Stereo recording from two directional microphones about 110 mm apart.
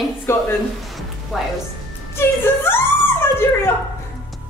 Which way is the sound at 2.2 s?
20° left (ahead or behind).